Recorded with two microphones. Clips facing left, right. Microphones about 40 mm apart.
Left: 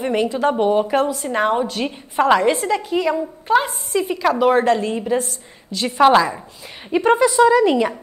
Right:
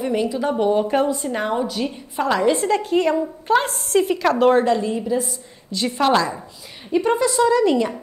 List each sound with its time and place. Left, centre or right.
0.0 s a woman's voice: left
0.6 s a woman's voice: left
2.9 s a woman's voice: centre
4.6 s a woman's voice: left
5.8 s a woman's voice: left